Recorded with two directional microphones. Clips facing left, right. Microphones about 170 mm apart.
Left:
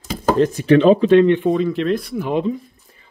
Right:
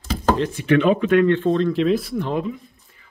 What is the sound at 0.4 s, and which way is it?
Speech, 40° left (ahead or behind).